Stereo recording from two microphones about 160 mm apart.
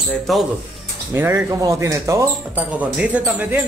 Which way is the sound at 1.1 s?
15° right (ahead or behind).